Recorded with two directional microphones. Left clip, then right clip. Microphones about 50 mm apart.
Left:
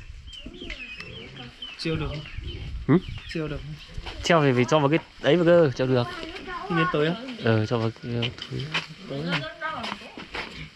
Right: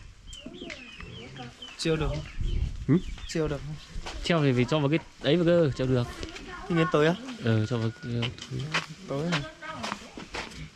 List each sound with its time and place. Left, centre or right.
1.4 s chicken: right
3.3 s speech: right
5.6 s speech: centre
6.2 s a sound: right
7.5 s speech: centre
8.2 s a sound: right